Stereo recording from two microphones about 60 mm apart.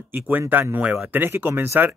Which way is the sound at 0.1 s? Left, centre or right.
Right.